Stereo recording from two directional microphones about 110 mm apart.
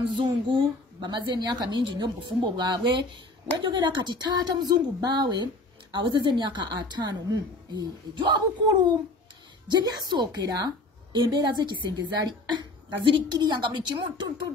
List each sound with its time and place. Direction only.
0.2 s a woman's voice: 50° right (ahead or behind)